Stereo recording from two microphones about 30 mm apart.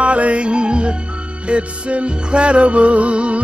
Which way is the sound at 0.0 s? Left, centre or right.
Right.